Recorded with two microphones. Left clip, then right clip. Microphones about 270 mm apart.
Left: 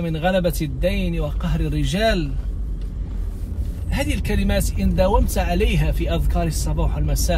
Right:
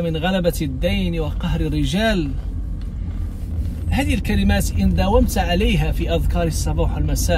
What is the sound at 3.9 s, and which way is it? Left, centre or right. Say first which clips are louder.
A man's voice: right 2 dB; centre.